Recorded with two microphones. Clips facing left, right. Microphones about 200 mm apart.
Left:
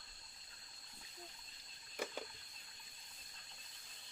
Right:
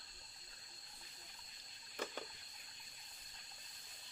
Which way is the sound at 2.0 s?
10° left (ahead or behind).